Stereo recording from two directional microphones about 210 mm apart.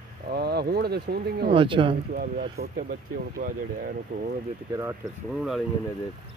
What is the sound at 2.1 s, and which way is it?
Speech, 45° right (ahead or behind).